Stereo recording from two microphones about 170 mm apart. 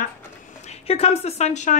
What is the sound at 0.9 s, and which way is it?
Speech, 35° left (ahead or behind).